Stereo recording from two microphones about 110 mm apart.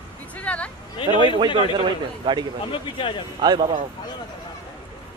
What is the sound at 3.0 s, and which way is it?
Speech, 50° left (ahead or behind).